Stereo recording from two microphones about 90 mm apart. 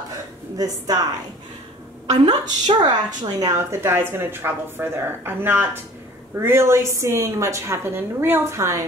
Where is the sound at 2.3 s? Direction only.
50° right (ahead or behind).